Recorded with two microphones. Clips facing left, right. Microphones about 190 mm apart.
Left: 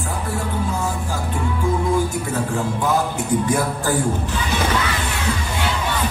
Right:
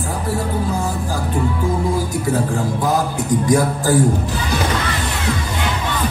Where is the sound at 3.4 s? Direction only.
40° right (ahead or behind).